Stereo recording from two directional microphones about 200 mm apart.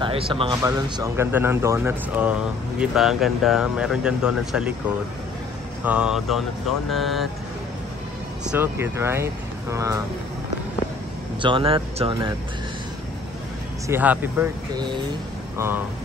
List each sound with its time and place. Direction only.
0.0 s speech: 25° right (ahead or behind); by 4.6 s 5° right (ahead or behind)
5.9 s speech: 5° right (ahead or behind)
8.5 s speech: 10° right (ahead or behind)
11.4 s speech: 25° right (ahead or behind)
13.8 s speech: 10° right (ahead or behind)
15.5 s speech: 10° right (ahead or behind)